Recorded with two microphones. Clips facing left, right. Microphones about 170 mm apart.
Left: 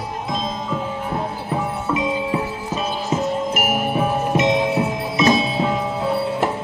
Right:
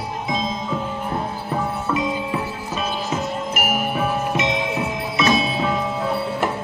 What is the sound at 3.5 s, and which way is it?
Music, 45° left (ahead or behind).